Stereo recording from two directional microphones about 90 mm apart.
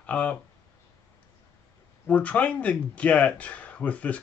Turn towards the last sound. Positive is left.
turn(degrees=15)  # may be behind; listen again after turning